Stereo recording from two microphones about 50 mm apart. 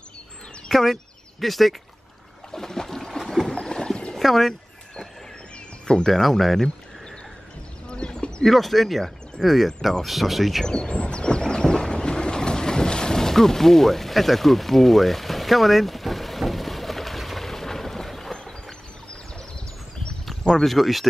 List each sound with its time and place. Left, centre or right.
0.7 s speech: centre
2.5 s a sound: centre
3.5 s rowboat: centre
4.1 s a sound: centre
5.9 s speech: centre
6.2 s speech: centre
7.9 s a sound: centre
8.5 s speech: centre
10.6 s vehicle: centre
20.6 s speech: centre